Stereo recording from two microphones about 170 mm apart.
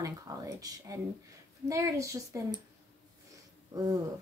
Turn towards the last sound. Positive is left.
turn(degrees=-20)  # may be behind; listen again after turning